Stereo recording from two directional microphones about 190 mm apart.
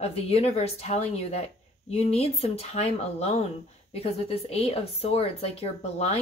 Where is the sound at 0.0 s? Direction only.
35° left (ahead or behind).